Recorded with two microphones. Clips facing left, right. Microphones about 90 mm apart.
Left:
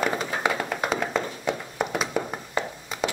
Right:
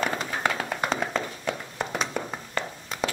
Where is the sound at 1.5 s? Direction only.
15° left (ahead or behind).